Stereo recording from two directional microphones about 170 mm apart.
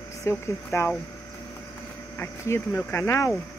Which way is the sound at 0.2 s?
15° left (ahead or behind).